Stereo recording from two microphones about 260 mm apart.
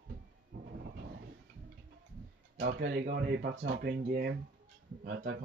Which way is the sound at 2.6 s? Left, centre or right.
Right.